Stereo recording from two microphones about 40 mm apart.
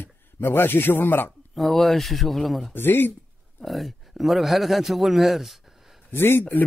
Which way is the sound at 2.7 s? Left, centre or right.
Left.